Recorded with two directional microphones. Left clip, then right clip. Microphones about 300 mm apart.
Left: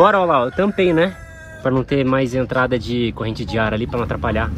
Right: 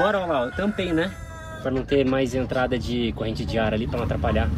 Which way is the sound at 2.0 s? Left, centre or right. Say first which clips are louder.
Left 4 dB; centre.